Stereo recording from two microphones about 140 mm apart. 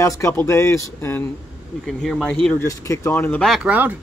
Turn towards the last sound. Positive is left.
turn(degrees=-10)  # may be behind; listen again after turning